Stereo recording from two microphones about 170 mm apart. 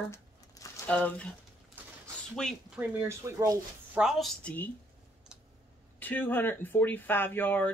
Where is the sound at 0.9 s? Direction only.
10° left (ahead or behind).